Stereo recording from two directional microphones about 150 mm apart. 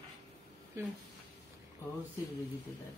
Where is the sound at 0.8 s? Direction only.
20° right (ahead or behind).